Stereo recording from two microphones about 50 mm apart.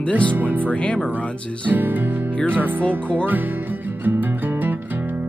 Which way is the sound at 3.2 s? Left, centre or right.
Right.